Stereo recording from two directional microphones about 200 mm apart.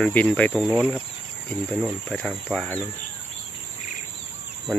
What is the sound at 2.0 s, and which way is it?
Speech, centre (ahead or behind).